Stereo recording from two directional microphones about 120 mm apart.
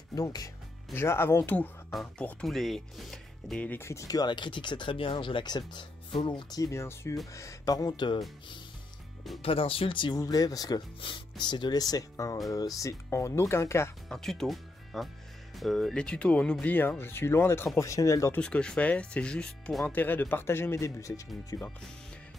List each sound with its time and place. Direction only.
0.1 s speech: 30° left (ahead or behind)
0.9 s speech: 20° left (ahead or behind)
1.9 s speech: centre (ahead or behind)
3.6 s speech: 20° left (ahead or behind); by 6.6 s 45° left (ahead or behind)
6.6 s speech: 20° left (ahead or behind); by 8.2 s 40° left (ahead or behind)
9.4 s speech: 50° left (ahead or behind); by 10.8 s 30° left (ahead or behind)
11.0 s speech: 45° left (ahead or behind); by 13.9 s 20° left (ahead or behind)
14.0 s speech: 5° left (ahead or behind); by 18.4 s 25° left (ahead or behind)
18.4 s speech: 5° left (ahead or behind); by 21.5 s 25° left (ahead or behind)